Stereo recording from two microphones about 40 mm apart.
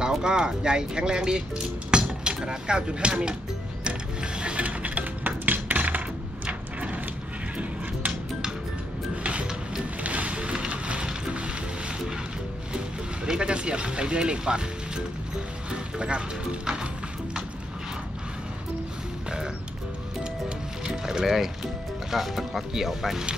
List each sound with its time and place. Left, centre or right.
0.2 s speech: centre
3.8 s ratchet: right
9.1 s music: right
10.0 s fire: right
12.7 s speech: right
15.7 s speech: right
21.0 s speech: centre